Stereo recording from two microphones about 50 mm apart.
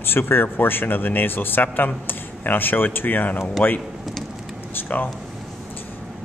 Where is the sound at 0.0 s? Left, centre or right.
Left.